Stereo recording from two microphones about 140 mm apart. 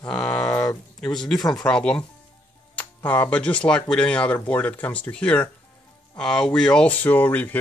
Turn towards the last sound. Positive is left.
turn(degrees=15)  # may be behind; listen again after turning